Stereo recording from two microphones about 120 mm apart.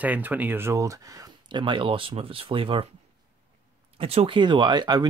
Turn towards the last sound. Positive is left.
turn(degrees=-35)  # may be behind; listen again after turning